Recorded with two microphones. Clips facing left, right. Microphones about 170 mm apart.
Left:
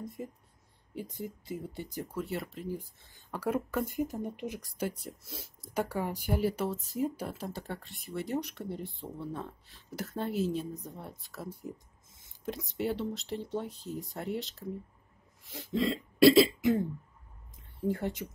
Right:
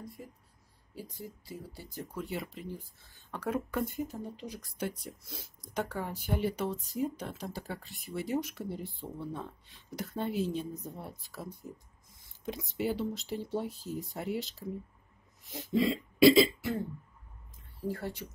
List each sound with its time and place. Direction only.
0.0 s a sound: 20° left (ahead or behind)
0.9 s speech: 20° left (ahead or behind); by 2.7 s centre (ahead or behind)
2.7 s speech: 15° left (ahead or behind)
4.7 s speech: 5° left (ahead or behind)
15.7 s speech: 5° right (ahead or behind)
17.8 s speech: 20° left (ahead or behind)